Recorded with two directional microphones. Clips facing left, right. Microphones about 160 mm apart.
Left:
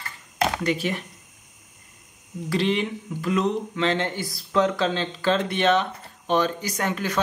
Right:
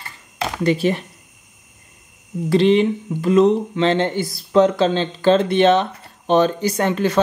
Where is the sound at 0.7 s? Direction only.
30° right (ahead or behind).